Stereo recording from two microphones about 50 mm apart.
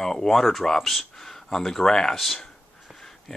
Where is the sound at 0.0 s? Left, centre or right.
Centre.